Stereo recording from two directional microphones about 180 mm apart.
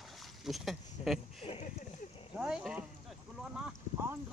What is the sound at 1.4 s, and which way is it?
Speech, 30° left (ahead or behind).